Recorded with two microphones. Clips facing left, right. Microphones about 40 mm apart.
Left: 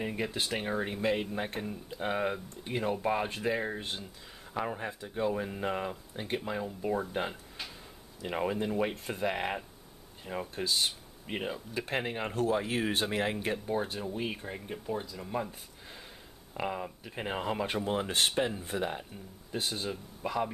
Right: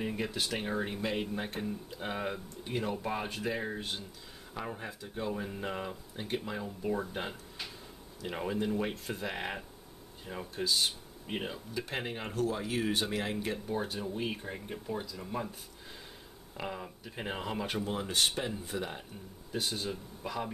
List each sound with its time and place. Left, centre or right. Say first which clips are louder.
0.0 s speech: left 1 dB; centre
12.4 s speech: left 2 dB; left
13.9 s speech: even; centre
16.5 s speech: left 5 dB; centre
17.8 s speech: left 2 dB; left
18.3 s speech: left 5 dB; centre
18.6 s speech: left 3 dB; left
19.7 s speech: left 1 dB; centre